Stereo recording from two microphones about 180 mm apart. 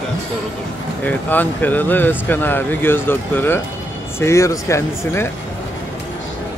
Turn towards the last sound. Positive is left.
turn(degrees=15)  # may be behind; listen again after turning